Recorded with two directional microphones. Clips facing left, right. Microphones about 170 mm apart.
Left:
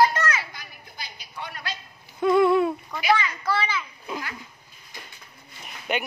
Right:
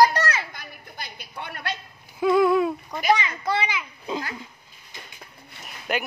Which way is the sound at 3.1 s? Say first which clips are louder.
Even; 20° right (ahead or behind).